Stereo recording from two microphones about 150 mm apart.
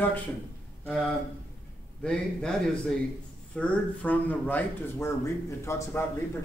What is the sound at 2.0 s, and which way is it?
A man's voice, 5° left (ahead or behind).